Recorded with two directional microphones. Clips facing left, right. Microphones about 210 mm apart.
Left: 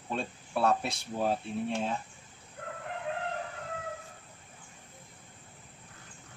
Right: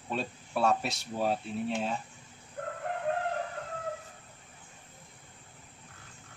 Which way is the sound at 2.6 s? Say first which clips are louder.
Right 5 dB; 50° right (ahead or behind).